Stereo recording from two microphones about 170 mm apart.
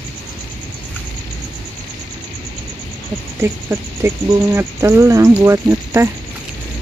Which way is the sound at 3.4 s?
15° right (ahead or behind).